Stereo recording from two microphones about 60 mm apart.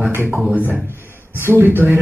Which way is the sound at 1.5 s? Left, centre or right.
Right.